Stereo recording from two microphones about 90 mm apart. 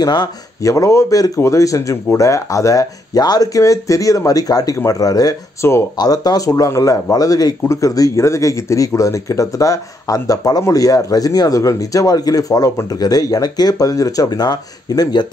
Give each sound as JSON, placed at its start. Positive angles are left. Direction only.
{"t": 0.0, "sound": "speech", "side_deg": 50}